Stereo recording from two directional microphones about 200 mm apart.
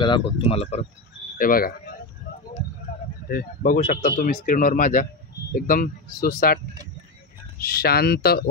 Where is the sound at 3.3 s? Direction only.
45° left (ahead or behind).